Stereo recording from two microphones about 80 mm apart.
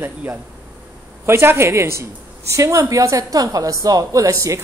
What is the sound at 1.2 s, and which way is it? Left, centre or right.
A woman's voice, right.